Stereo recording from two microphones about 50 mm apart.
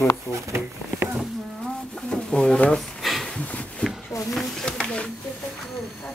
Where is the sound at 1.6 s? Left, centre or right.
Centre.